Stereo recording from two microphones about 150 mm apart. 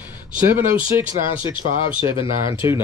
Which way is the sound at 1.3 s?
30° left (ahead or behind).